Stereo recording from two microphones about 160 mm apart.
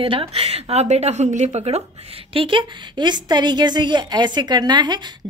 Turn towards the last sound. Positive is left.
turn(degrees=-25)  # may be behind; listen again after turning